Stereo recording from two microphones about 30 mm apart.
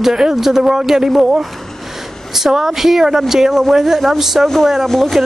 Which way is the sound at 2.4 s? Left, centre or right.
Centre.